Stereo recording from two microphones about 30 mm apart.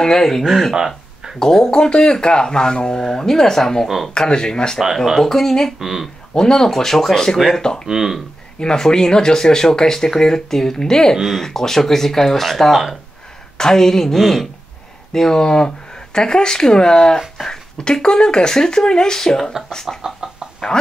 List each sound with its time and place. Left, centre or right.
0.0 s speech: left
0.4 s speech: centre
1.4 s speech: centre
3.8 s speech: centre
4.2 s speech: left
5.3 s speech: centre
5.8 s speech: centre
6.5 s speech: centre
7.5 s speech: left
7.9 s speech: centre
8.5 s speech: left; by 14.5 s centre
15.1 s speech: centre
20.6 s speech: centre